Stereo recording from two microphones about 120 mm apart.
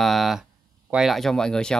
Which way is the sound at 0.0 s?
Centre (ahead or behind).